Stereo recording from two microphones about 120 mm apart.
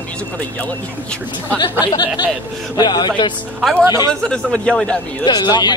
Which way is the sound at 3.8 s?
25° right (ahead or behind).